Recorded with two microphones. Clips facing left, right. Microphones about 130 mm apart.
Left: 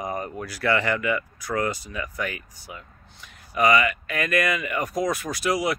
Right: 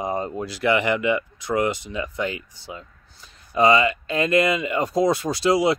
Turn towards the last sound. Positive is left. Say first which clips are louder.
# right 5 dB
turn(degrees=-30)  # may be behind; listen again after turning